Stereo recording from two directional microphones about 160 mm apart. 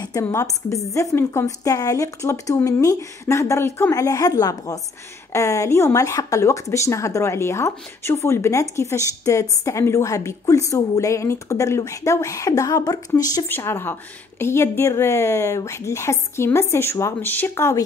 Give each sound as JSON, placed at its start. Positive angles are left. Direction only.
{"t": 0.0, "sound": "a woman's voice", "side_deg": 20}